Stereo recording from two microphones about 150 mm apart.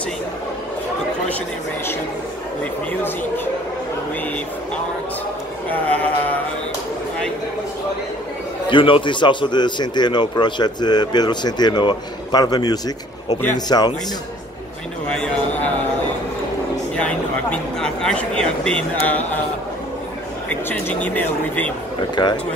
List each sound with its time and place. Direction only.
5.7 s speech: 10° left (ahead or behind)
8.6 s a man's voice: 35° left (ahead or behind)
15.0 s a man's voice: 5° left (ahead or behind)
16.9 s speech: 5° left (ahead or behind)
20.4 s speech: 10° left (ahead or behind)
22.1 s a man's voice: 30° left (ahead or behind)